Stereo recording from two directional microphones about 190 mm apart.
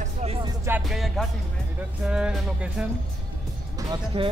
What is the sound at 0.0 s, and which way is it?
Music, 30° right (ahead or behind).